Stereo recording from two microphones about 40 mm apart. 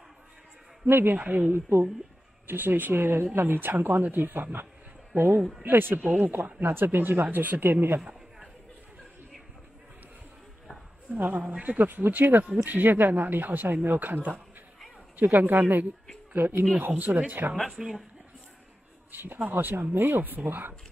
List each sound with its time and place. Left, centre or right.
0.8 s speech: right
1.2 s speech: right
1.5 s speech: right
2.4 s speech: right
5.6 s speech: right
6.1 s speech: right
11.1 s speech: right
11.9 s speech: right
16.3 s speech: right
16.7 s speech: right
17.6 s speech: centre
19.1 s speech: right